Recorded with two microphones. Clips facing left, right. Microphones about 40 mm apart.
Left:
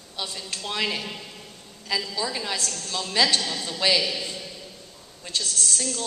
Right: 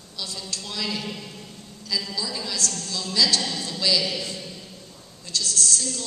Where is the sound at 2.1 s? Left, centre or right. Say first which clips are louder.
Left 2 dB; left.